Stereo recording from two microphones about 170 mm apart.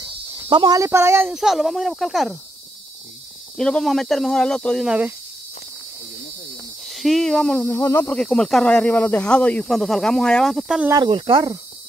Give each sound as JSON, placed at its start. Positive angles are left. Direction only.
{"t": 0.0, "sound": "snake", "side_deg": -30}
{"t": 0.7, "sound": "speech", "side_deg": -15}
{"t": 1.3, "sound": "speech", "side_deg": 0}
{"t": 3.5, "sound": "speech", "side_deg": 0}
{"t": 6.9, "sound": "speech", "side_deg": 0}
{"t": 8.2, "sound": "speech", "side_deg": 5}
{"t": 11.1, "sound": "speech", "side_deg": -30}